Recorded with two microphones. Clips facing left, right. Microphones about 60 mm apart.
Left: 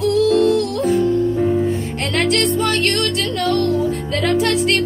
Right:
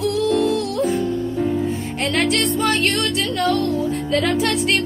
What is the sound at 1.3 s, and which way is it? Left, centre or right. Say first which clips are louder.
Music: left 4 dB; left.